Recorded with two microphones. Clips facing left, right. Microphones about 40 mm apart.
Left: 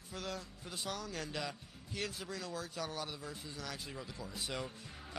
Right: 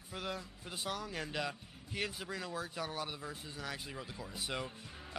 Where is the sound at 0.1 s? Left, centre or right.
Centre.